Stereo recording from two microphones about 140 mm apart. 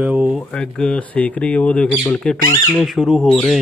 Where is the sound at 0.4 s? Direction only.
5° left (ahead or behind).